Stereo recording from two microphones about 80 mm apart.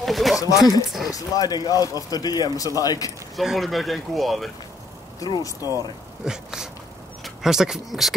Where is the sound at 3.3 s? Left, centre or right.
Centre.